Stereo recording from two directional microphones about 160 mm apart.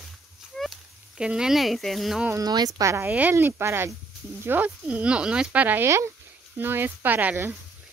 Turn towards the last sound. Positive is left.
turn(degrees=-10)  # may be behind; listen again after turning